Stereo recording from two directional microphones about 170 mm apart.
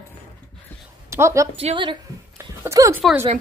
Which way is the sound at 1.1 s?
15° right (ahead or behind).